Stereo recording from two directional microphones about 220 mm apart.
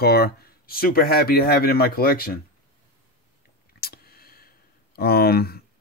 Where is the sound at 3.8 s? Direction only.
45° left (ahead or behind).